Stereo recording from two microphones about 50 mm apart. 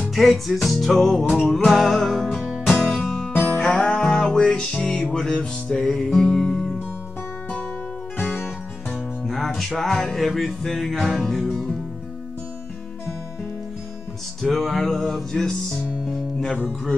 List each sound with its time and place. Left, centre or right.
0.1 s music: centre
8.2 s music: left
8.9 s music: centre
14.4 s music: centre